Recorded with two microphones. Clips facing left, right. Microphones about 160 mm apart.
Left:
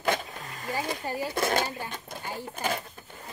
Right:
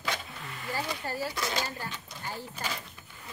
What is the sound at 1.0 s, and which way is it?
Speech, 15° left (ahead or behind).